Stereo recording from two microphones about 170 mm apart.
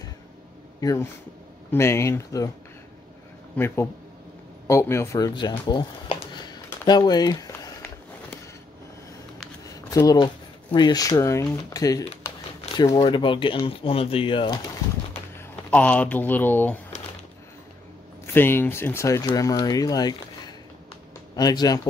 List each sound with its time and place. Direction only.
0.7 s speech: 20° left (ahead or behind)
3.5 s speech: 15° left (ahead or behind)
9.8 s speech: 20° left (ahead or behind)
13.0 s speech: 30° left (ahead or behind)
15.7 s speech: 10° left (ahead or behind)
18.2 s speech: 15° left (ahead or behind)